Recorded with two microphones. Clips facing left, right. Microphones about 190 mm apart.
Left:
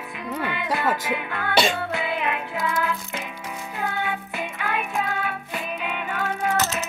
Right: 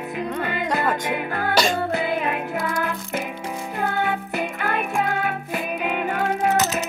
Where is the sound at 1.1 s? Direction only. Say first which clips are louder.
Right 2 dB; 40° right (ahead or behind).